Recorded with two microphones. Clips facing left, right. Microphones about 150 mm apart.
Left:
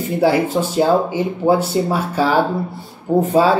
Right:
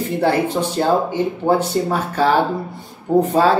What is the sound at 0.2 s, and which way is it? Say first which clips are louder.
Speech: left 3 dB; 10° left (ahead or behind).